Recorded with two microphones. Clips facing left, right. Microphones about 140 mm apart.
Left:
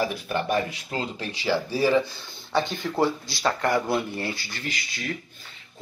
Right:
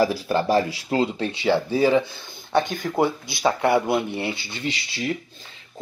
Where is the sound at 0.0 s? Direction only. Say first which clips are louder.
Right 6 dB; 35° right (ahead or behind).